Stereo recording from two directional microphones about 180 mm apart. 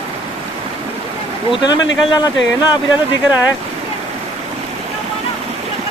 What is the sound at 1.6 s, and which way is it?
A man's voice, 25° left (ahead or behind).